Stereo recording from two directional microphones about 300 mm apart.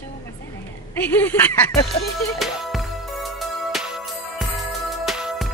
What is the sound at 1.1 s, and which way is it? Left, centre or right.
Speech, centre.